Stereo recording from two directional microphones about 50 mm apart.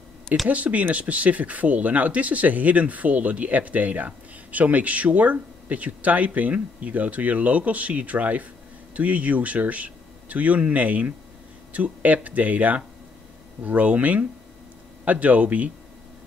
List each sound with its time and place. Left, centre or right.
0.5 s speech: right